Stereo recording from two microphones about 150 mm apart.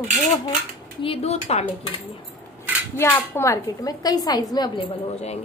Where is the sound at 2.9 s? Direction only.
15° left (ahead or behind).